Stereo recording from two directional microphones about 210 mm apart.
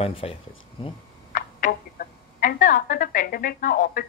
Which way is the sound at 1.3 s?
40° left (ahead or behind).